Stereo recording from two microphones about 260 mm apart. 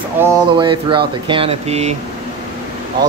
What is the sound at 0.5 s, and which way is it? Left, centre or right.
Speech, centre.